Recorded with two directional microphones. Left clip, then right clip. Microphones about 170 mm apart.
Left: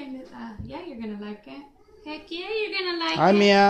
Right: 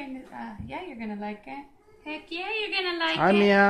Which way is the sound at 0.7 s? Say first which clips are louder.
Left 1 dB; 35° right (ahead or behind).